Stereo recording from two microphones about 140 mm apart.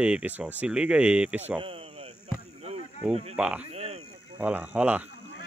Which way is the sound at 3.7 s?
50° right (ahead or behind).